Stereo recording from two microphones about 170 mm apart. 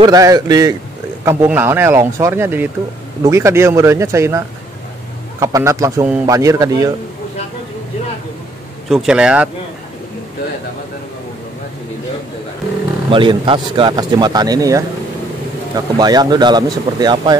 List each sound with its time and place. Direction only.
0.0 s speech: 20° right (ahead or behind)
5.4 s speech: 20° right (ahead or behind)
8.8 s speech: centre (ahead or behind)
13.1 s speech: 30° right (ahead or behind)